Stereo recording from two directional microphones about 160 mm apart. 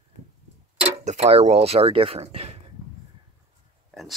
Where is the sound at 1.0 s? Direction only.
45° right (ahead or behind).